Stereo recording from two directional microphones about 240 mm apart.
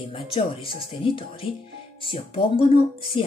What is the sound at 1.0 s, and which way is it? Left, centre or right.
Speech, left.